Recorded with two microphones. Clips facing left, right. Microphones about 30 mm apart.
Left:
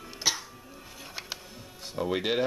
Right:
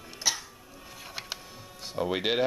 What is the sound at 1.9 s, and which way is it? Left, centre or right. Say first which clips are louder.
Speech: even; centre.